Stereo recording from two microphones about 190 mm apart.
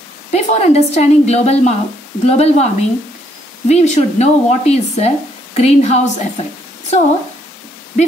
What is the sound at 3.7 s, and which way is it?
Speech, 35° left (ahead or behind).